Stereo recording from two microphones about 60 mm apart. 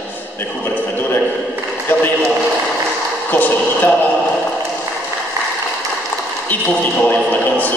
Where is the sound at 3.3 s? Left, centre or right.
Left.